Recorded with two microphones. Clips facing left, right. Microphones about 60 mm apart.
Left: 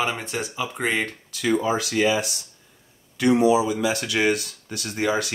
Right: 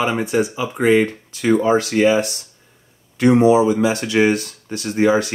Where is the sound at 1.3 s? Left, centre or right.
Right.